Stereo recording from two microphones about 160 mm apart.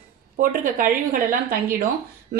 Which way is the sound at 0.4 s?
60° right (ahead or behind).